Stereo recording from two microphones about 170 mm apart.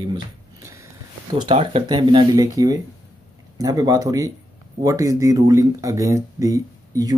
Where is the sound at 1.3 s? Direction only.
30° right (ahead or behind).